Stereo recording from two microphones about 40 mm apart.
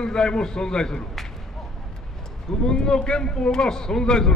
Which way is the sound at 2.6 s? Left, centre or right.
Centre.